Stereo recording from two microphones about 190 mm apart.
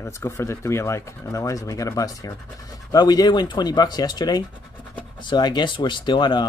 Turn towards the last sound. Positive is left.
turn(degrees=25)  # may be behind; listen again after turning